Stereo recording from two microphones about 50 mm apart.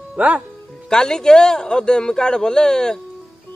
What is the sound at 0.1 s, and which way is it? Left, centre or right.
Speech, right.